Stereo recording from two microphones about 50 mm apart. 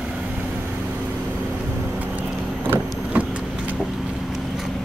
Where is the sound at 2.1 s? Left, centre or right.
Right.